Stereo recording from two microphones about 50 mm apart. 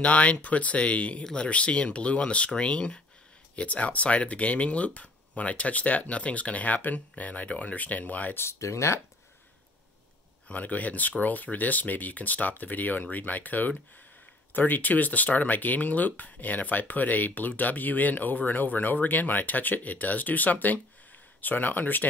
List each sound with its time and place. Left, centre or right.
0.0 s speech: left
8.4 s speech: left
10.5 s speech: left